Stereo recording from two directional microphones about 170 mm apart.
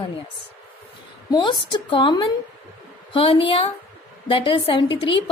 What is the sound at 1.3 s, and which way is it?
A woman's voice, 25° left (ahead or behind).